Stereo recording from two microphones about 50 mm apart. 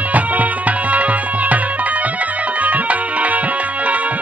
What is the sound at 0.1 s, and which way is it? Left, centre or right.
Music, right.